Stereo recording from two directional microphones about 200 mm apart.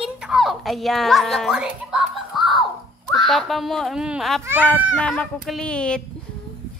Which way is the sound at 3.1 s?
Centre (ahead or behind).